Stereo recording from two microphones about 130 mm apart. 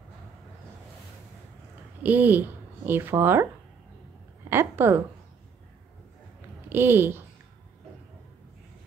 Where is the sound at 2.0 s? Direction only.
15° right (ahead or behind).